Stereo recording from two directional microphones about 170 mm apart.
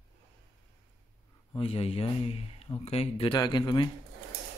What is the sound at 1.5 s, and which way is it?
Speech, 35° left (ahead or behind).